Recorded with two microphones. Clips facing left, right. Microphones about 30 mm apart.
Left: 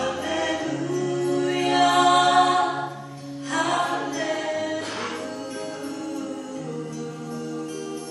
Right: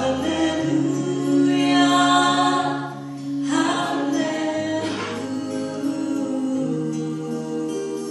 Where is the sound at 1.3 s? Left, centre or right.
Centre.